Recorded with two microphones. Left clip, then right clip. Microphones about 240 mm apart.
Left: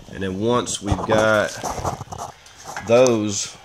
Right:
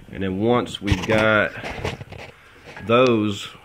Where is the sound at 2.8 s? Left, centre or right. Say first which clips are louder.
Left 2 dB; centre.